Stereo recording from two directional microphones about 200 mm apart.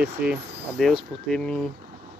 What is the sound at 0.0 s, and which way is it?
Speech, 5° right (ahead or behind).